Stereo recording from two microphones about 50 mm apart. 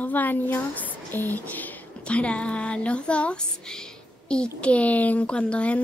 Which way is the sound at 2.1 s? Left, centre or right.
Left.